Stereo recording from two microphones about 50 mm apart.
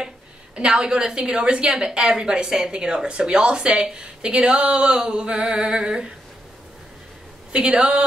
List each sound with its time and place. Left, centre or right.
0.6 s a woman's voice: centre
7.5 s a woman's voice: centre